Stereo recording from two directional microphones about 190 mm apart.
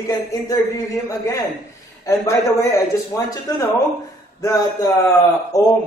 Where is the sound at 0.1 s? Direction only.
20° left (ahead or behind).